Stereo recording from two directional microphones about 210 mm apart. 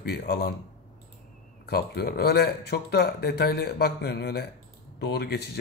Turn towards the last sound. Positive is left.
turn(degrees=50)  # may be behind; listen again after turning